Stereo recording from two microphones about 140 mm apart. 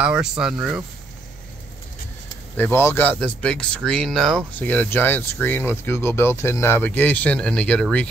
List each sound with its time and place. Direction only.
0.0 s speech: 5° right (ahead or behind)
2.5 s speech: 15° left (ahead or behind)
4.6 s speech: 10° left (ahead or behind)